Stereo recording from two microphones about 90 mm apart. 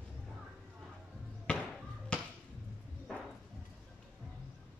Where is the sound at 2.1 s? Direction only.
15° left (ahead or behind).